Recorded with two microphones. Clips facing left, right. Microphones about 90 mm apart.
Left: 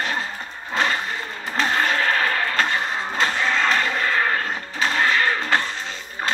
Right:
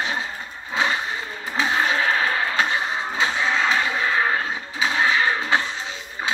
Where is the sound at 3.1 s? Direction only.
60° left (ahead or behind).